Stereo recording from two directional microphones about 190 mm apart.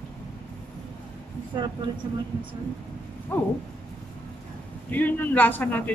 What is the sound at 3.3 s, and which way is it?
Speech, 10° left (ahead or behind).